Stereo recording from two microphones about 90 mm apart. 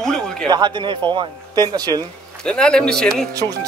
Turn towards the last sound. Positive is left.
turn(degrees=-40)  # may be behind; listen again after turning